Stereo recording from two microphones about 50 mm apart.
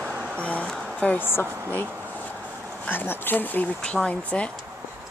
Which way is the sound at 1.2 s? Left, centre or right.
Left.